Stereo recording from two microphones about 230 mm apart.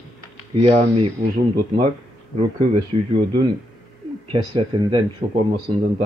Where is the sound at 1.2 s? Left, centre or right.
Right.